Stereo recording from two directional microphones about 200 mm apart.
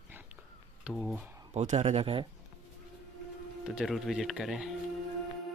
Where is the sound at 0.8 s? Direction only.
Centre (ahead or behind).